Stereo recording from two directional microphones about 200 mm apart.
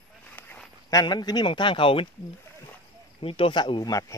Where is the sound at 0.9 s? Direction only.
20° left (ahead or behind).